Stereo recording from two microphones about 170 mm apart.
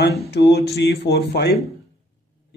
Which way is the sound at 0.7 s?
75° left (ahead or behind).